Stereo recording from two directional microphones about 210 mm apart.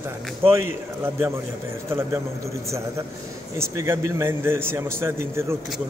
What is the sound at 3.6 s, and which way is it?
A man's voice, 15° right (ahead or behind).